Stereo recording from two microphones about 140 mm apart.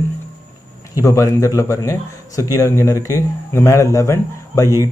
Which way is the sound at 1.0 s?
20° left (ahead or behind).